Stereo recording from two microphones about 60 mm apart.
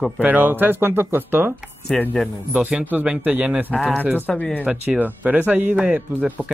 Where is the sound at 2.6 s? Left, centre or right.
Right.